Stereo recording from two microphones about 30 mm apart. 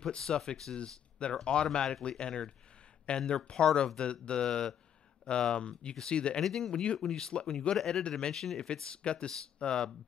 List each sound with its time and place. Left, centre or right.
0.0 s speech: left
6.4 s speech: centre
6.8 s speech: left
7.1 s speech: left
7.7 s speech: centre
8.2 s speech: left